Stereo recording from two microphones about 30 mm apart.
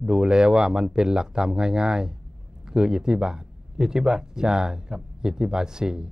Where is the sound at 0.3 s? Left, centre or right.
Right.